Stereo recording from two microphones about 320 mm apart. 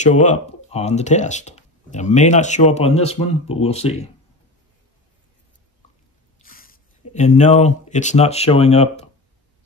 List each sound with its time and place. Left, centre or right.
0.0 s speech: left
6.4 s speech: left